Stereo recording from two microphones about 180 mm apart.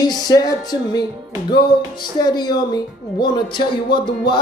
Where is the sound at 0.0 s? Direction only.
20° left (ahead or behind).